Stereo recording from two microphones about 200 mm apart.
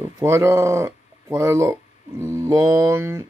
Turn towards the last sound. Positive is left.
turn(degrees=-15)  # may be behind; listen again after turning